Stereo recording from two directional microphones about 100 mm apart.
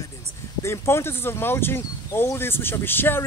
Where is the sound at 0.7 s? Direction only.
25° left (ahead or behind).